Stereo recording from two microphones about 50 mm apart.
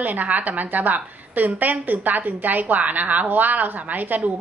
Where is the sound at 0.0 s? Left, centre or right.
Right.